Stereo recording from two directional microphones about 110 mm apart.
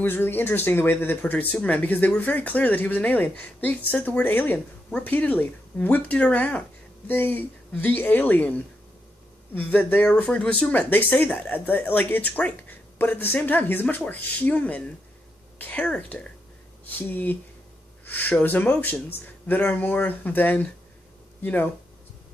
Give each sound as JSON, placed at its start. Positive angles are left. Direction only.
{"t": 0.0, "sound": "speech", "side_deg": 20}